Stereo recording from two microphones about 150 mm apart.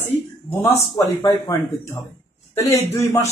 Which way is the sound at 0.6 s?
20° left (ahead or behind).